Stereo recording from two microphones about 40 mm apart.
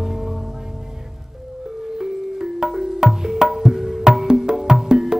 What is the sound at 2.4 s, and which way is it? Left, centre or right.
Music, centre.